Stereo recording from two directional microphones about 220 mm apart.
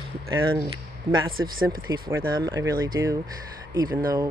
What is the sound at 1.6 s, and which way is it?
Speech, 20° right (ahead or behind).